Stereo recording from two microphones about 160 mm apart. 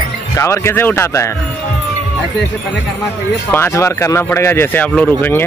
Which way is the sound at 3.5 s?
15° left (ahead or behind).